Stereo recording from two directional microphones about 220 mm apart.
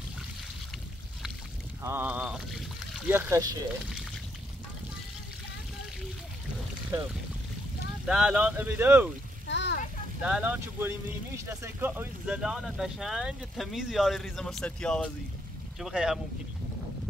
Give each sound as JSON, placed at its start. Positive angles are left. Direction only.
{"t": 1.8, "sound": "speech", "side_deg": -10}
{"t": 8.1, "sound": "speech", "side_deg": -5}
{"t": 9.5, "sound": "a sound", "side_deg": 50}
{"t": 10.2, "sound": "speech", "side_deg": -5}